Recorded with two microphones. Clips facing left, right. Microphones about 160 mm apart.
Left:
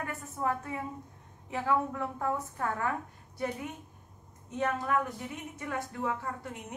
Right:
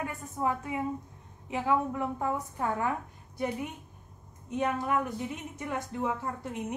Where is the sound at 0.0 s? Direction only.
15° right (ahead or behind).